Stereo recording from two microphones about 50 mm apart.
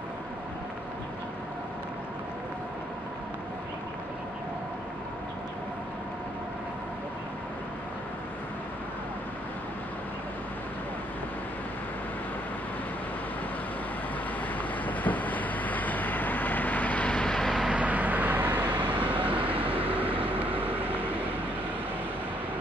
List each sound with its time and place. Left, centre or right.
14.6 s train: left
17.1 s vehicle: centre
17.6 s vehicle: right